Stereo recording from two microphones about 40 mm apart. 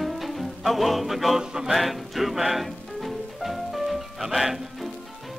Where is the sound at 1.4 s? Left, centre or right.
Centre.